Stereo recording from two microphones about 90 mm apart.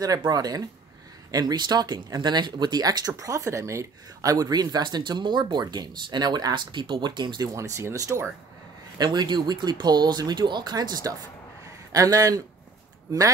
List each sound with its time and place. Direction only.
0.2 s speech: 45° right (ahead or behind)
8.9 s speech: 50° right (ahead or behind)